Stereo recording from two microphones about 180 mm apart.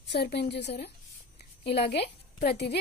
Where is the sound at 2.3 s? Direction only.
60° left (ahead or behind).